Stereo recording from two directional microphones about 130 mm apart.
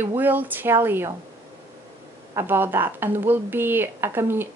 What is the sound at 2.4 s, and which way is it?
Speech, 15° right (ahead or behind).